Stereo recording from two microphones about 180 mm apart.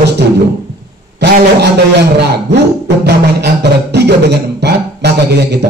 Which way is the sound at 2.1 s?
70° right (ahead or behind).